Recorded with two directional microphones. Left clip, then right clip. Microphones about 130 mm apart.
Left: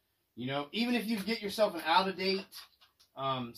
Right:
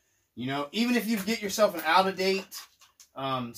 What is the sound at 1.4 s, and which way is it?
Speech, 40° right (ahead or behind).